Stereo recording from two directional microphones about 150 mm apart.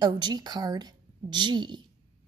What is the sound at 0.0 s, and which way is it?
Speech, 25° right (ahead or behind).